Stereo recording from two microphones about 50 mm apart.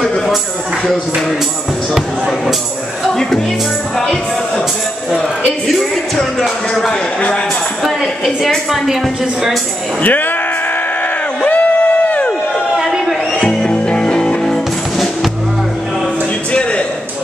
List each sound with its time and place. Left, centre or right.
2.0 s speech: centre
5.7 s speech: centre
10.0 s speech: left
11.4 s a sound: left
12.7 s a sound: centre
13.4 s music: centre